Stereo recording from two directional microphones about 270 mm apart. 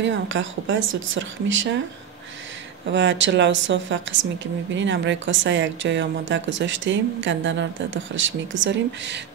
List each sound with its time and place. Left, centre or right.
0.0 s speech: right
2.9 s speech: right